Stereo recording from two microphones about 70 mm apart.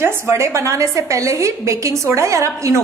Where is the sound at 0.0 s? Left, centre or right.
Right.